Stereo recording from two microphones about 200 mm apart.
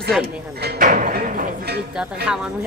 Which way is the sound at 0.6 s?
40° right (ahead or behind).